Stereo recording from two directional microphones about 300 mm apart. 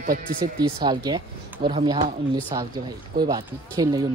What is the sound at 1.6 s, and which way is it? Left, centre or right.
Speech, right.